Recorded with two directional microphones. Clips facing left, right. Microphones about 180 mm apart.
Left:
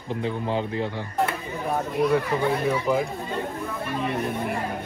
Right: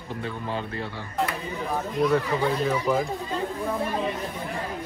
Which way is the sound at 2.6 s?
15° left (ahead or behind).